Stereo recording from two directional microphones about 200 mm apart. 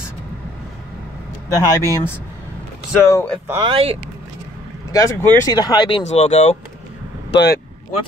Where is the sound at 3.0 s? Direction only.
15° left (ahead or behind).